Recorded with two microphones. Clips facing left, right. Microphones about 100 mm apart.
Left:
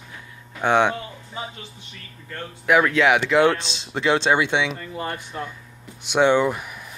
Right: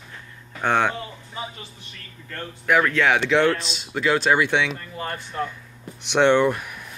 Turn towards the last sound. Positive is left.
turn(degrees=10)  # may be behind; listen again after turning